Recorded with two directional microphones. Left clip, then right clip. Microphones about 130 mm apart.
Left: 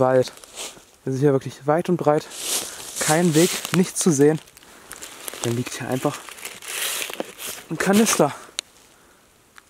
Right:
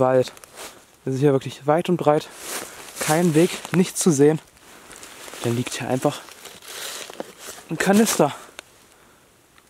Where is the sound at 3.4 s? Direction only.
20° left (ahead or behind).